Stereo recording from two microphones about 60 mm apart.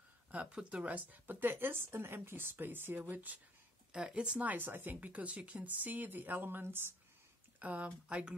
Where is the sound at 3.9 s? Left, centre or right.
Centre; by 6.9 s right.